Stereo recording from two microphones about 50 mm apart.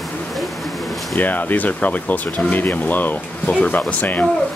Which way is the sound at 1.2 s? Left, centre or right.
Left.